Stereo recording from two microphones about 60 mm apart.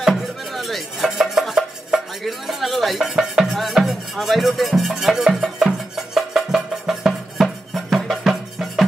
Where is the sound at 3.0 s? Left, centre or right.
Centre.